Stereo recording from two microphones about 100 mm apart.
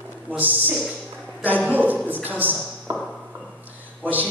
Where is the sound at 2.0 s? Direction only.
20° right (ahead or behind).